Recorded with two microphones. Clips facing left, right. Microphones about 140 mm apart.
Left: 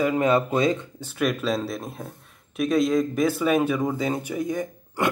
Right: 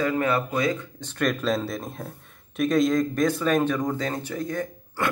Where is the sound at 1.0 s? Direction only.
5° left (ahead or behind).